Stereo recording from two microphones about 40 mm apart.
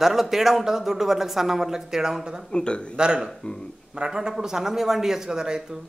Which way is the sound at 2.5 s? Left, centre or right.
Left.